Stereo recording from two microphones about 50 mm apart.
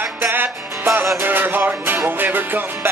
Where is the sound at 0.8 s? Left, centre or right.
Right.